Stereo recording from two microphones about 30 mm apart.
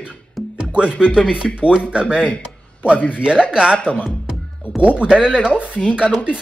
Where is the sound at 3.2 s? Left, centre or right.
Right.